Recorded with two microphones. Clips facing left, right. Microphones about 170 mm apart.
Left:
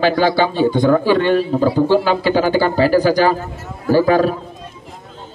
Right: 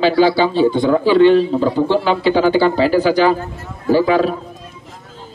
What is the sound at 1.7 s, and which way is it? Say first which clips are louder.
Speech: left 2 dB; 10° left (ahead or behind).